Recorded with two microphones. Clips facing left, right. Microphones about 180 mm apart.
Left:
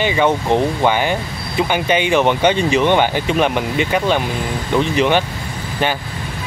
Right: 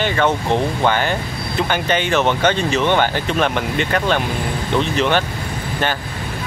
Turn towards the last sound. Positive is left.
turn(degrees=15)  # may be behind; listen again after turning